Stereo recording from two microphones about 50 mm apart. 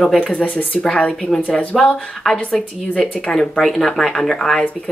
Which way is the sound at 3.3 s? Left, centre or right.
Left.